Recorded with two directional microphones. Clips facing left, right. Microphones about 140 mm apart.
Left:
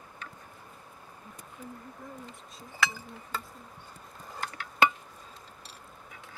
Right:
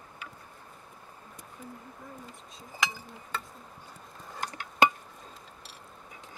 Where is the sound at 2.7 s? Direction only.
15° right (ahead or behind).